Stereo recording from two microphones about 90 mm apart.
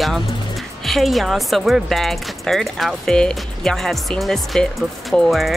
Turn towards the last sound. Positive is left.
turn(degrees=0)  # may be behind; listen again after turning